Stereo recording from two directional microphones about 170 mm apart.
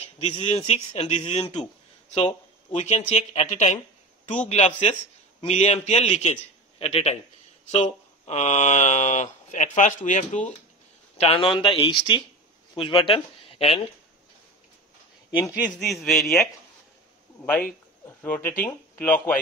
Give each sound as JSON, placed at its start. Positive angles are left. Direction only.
{"t": 0.0, "sound": "speech", "side_deg": 35}
{"t": 11.1, "sound": "speech", "side_deg": 35}
{"t": 15.8, "sound": "a man's voice", "side_deg": 0}